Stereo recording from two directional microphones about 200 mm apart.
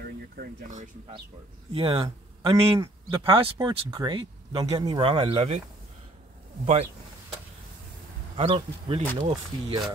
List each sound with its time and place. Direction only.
0.4 s speech: 40° right (ahead or behind)
1.7 s speech: 30° right (ahead or behind)
6.6 s speech: 30° right (ahead or behind)
8.4 s speech: 25° right (ahead or behind)